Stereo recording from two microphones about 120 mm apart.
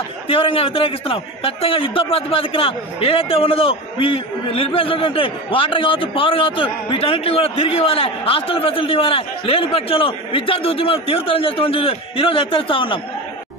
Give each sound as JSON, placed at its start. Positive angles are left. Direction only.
{"t": 0.3, "sound": "a man's voice", "side_deg": 50}